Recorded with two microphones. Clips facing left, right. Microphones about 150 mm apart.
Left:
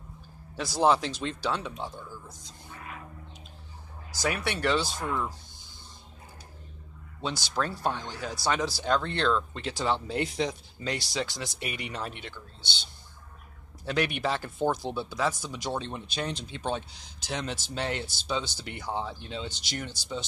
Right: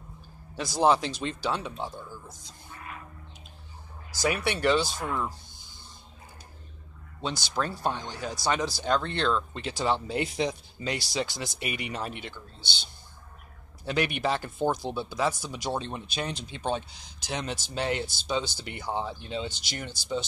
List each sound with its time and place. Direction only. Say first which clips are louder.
0.6 s speech: right 1 dB; 5° left (ahead or behind)
4.2 s speech: right 2 dB; 5° right (ahead or behind)
7.2 s speech: even; centre (ahead or behind)
13.8 s speech: right 1 dB; 5° right (ahead or behind)